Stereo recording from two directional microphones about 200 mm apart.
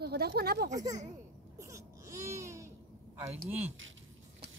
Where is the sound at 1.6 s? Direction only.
15° right (ahead or behind).